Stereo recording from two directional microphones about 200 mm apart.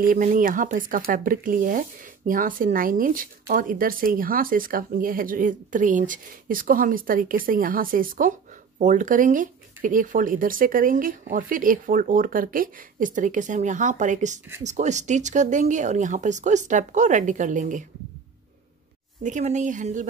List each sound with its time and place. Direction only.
0.0 s speech: 45° right (ahead or behind)
19.2 s speech: 35° right (ahead or behind)